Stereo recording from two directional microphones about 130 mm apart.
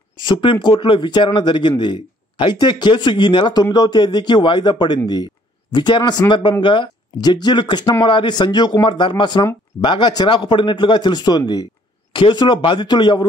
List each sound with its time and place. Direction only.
0.2 s speech: 35° left (ahead or behind)